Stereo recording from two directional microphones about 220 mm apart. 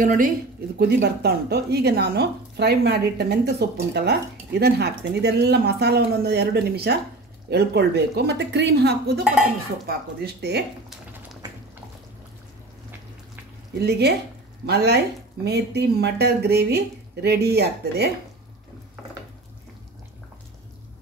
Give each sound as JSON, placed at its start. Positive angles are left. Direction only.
{"t": 0.0, "sound": "a woman's voice", "side_deg": -40}
{"t": 13.7, "sound": "speech", "side_deg": -50}